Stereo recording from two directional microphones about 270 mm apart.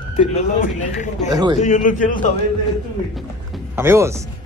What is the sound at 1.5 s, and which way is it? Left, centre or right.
Speech, left.